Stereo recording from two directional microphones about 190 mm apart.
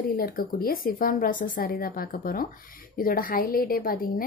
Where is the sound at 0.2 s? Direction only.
50° left (ahead or behind).